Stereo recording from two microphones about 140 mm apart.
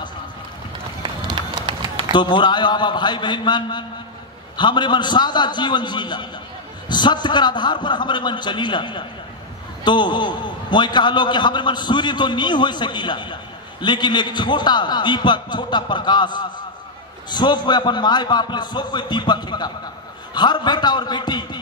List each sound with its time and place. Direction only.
1.0 s run: 35° right (ahead or behind)
2.1 s a man's voice: 35° left (ahead or behind)